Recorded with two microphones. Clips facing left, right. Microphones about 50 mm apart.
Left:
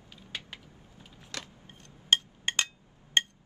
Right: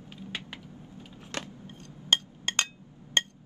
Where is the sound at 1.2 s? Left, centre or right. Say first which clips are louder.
Right 5 dB; right.